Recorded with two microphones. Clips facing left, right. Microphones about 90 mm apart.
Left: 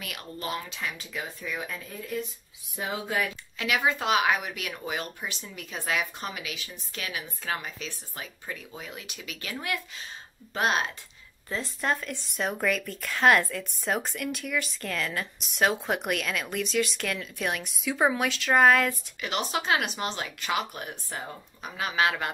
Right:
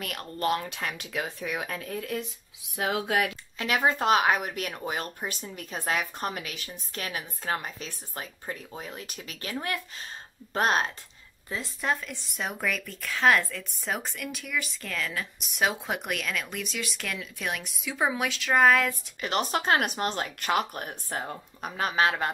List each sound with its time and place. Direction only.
0.0 s speech: 50° right (ahead or behind); by 3.3 s 70° right (ahead or behind)
3.5 s speech: 40° right (ahead or behind)
11.4 s speech: 5° right (ahead or behind)
19.2 s speech: 45° right (ahead or behind)